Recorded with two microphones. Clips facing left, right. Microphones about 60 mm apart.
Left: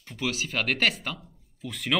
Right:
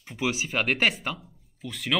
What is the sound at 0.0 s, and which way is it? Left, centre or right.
Speech, centre.